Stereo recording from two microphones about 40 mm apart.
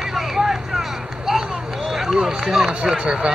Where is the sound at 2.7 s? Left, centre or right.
Right.